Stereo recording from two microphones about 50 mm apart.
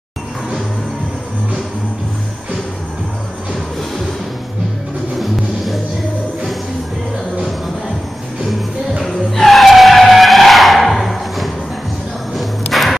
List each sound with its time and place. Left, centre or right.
5.2 s music: centre
9.0 s vehicle: centre
12.4 s music: centre